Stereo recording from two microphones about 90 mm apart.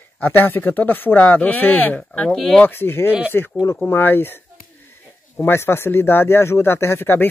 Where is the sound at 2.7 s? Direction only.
25° left (ahead or behind).